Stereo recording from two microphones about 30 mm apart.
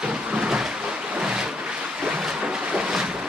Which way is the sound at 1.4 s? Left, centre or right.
Right.